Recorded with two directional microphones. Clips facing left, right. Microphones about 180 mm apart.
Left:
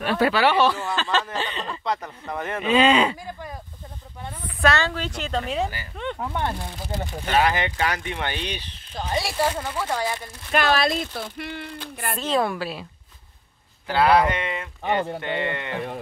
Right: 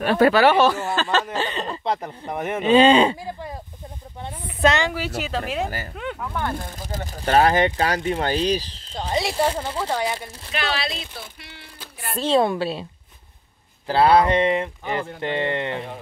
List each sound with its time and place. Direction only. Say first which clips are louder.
0.0 s speech: right 5 dB; 45° right (ahead or behind)
1.9 s speech: right 1 dB; 25° right (ahead or behind)
4.2 s a sound: right 3 dB; 20° right (ahead or behind)
6.1 s speech: left 1 dB; 25° left (ahead or behind)
6.6 s speech: left 1 dB; 45° right (ahead or behind)
8.9 s speech: right 2 dB; 20° right (ahead or behind)
10.5 s speech: left 6 dB; 50° left (ahead or behind)
12.2 s speech: right 5 dB; 25° right (ahead or behind)
13.8 s speech: right 2 dB; 30° right (ahead or behind)
14.9 s speech: left 7 dB; 25° left (ahead or behind)
15.2 s speech: right 3 dB; 30° right (ahead or behind)